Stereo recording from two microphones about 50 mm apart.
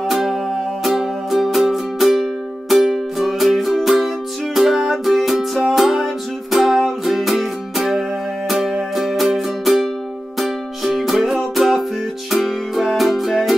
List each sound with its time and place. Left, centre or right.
0.0 s music: centre